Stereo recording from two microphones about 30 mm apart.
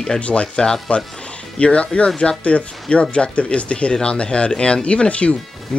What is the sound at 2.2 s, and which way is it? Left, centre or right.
Speech, left.